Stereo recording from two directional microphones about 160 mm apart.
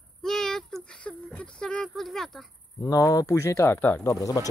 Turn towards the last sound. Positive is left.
turn(degrees=20)  # may be behind; listen again after turning